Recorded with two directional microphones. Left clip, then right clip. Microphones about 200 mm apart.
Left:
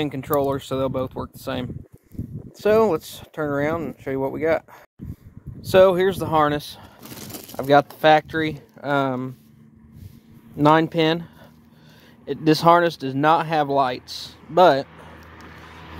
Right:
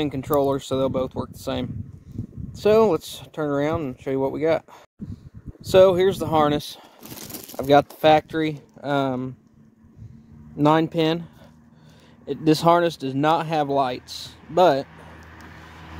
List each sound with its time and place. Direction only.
0.0 s speech: 10° right (ahead or behind)
5.6 s speech: centre (ahead or behind); by 6.9 s 20° right (ahead or behind)
7.0 s a sound: 25° left (ahead or behind)
7.5 s speech: 10° right (ahead or behind)
8.7 s speech: centre (ahead or behind)
10.6 s speech: 5° left (ahead or behind)
12.3 s speech: centre (ahead or behind)
15.4 s vehicle: 55° right (ahead or behind)